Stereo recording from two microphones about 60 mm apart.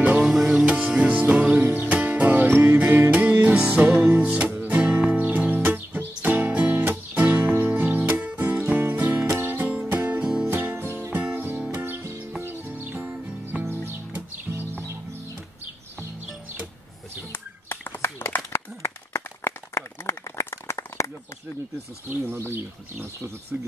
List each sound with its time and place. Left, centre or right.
0.2 s music: centre
0.7 s music: centre; by 14.6 s right
17.3 s a sound: left
22.1 s bird: right
23.5 s speech: right